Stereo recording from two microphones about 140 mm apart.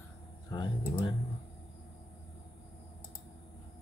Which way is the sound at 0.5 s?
35° left (ahead or behind).